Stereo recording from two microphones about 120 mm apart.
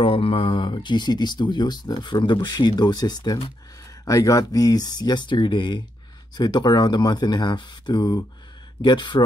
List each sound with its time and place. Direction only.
0.0 s speech: 50° left (ahead or behind)